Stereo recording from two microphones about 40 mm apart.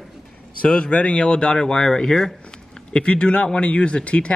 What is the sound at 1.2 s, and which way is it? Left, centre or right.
Speech, left.